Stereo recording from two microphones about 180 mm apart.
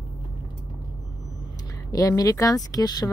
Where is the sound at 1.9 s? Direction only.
20° left (ahead or behind).